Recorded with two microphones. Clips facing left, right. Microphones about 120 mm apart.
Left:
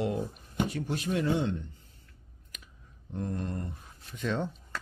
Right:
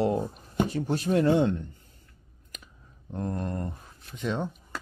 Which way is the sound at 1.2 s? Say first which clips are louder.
Right 7 dB; 60° right (ahead or behind).